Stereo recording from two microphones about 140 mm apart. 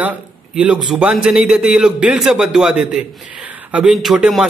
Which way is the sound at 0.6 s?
5° right (ahead or behind).